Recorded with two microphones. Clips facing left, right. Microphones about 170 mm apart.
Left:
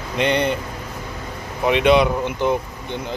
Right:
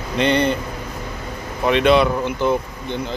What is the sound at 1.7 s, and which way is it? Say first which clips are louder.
Speech: even; 15° left (ahead or behind).